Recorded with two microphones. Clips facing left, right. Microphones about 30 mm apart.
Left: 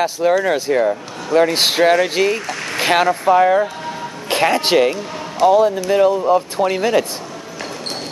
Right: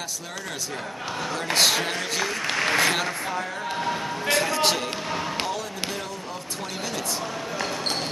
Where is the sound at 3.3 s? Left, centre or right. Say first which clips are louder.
Left 17 dB; left.